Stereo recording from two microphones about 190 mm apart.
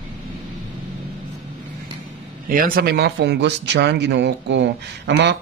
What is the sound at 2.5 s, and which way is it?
A man's voice, 50° right (ahead or behind).